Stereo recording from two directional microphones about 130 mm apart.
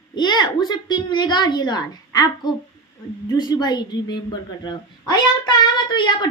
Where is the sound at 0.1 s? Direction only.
35° left (ahead or behind).